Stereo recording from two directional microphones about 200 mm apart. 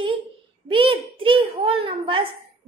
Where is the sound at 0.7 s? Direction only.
25° right (ahead or behind).